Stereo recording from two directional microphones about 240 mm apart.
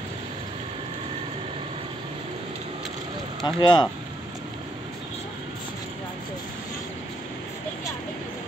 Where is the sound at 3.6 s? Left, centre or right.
Centre.